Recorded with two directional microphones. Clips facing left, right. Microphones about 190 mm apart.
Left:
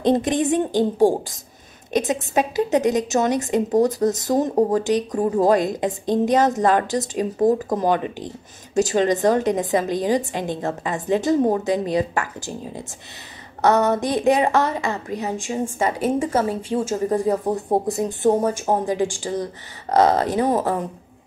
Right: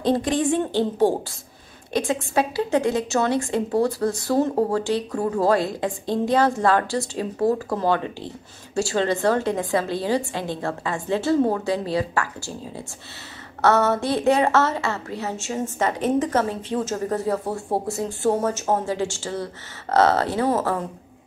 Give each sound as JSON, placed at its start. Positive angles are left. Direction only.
{"t": 0.0, "sound": "a woman's voice", "side_deg": 20}
{"t": 13.6, "sound": "a woman's voice", "side_deg": 15}